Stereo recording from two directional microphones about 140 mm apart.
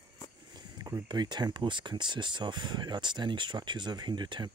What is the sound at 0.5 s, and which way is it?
Speech, 30° right (ahead or behind).